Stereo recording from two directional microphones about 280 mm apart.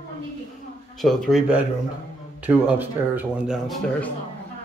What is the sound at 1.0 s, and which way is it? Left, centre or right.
Speech, centre.